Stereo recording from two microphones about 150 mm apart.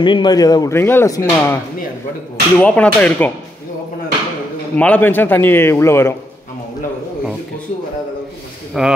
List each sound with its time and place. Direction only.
0.0 s a man's voice: 30° left (ahead or behind); by 3.3 s 10° left (ahead or behind)
4.7 s a man's voice: 10° left (ahead or behind)
8.8 s speech: 5° right (ahead or behind)